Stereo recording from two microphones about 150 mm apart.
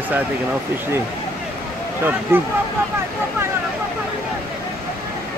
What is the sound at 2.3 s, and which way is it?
Speech, 15° right (ahead or behind).